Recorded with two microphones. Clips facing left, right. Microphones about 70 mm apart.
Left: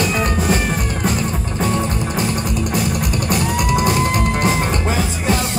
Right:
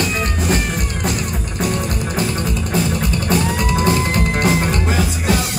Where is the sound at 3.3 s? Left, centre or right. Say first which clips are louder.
Even; centre.